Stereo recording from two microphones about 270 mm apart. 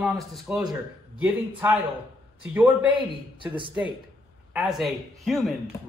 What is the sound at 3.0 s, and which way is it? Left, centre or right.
Speech, centre.